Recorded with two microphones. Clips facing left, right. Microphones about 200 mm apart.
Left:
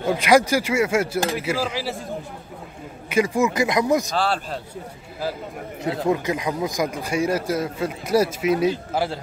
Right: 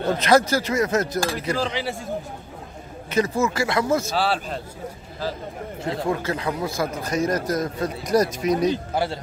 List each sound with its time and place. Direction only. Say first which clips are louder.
0.0 s a man's voice: left 1 dB; 10° left (ahead or behind)
3.1 s a man's voice: left 2 dB; 15° left (ahead or behind)
4.1 s speech: even; centre (ahead or behind)
6.0 s a man's voice: left 3 dB; 15° left (ahead or behind)